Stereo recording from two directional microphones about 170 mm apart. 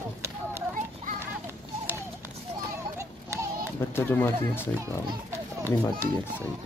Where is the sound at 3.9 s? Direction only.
15° left (ahead or behind).